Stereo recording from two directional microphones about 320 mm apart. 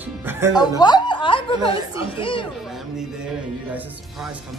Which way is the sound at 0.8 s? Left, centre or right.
Centre.